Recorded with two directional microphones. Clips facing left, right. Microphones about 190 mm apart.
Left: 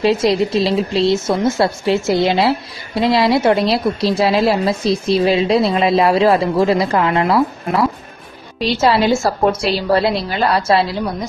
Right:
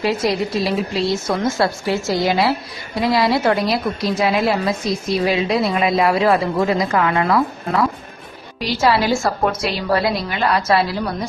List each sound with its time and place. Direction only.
0.0 s a woman's voice: 25° left (ahead or behind)
7.1 s a woman's voice: 20° left (ahead or behind)